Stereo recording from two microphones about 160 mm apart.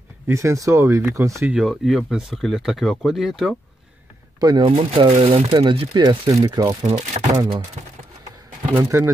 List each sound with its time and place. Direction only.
0.3 s speech: 20° right (ahead or behind)
1.5 s speech: 5° right (ahead or behind)
4.4 s speech: 25° right (ahead or behind)
8.7 s speech: 15° right (ahead or behind)